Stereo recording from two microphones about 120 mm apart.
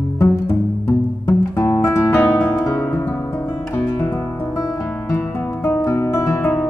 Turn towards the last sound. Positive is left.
turn(degrees=25)  # may be behind; listen again after turning